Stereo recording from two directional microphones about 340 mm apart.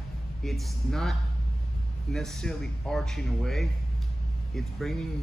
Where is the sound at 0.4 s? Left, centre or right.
Centre.